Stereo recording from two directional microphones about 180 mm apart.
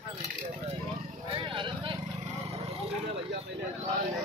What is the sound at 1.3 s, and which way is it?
Vehicle, 25° right (ahead or behind).